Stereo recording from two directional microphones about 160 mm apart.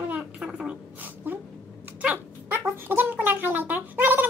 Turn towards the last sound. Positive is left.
turn(degrees=-10)  # may be behind; listen again after turning